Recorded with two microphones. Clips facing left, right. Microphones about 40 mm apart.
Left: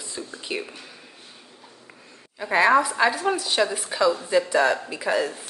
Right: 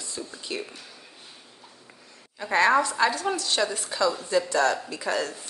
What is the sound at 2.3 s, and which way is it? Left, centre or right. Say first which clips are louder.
A woman's voice: left 2 dB; centre.